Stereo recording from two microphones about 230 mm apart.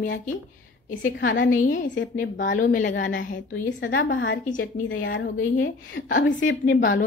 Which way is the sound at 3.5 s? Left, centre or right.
Left.